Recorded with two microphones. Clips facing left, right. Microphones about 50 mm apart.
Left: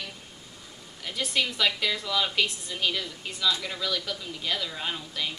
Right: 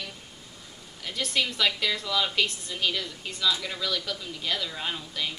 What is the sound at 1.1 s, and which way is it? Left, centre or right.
A woman's voice, centre.